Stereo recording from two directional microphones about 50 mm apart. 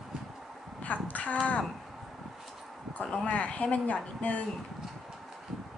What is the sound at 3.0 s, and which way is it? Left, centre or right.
Speech, left.